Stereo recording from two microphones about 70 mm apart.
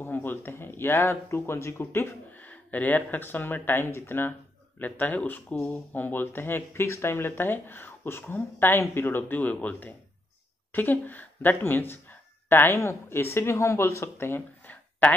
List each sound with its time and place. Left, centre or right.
0.0 s speech: left